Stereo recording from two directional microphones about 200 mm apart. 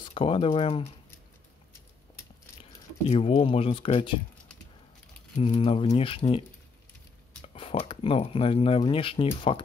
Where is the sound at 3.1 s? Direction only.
30° left (ahead or behind).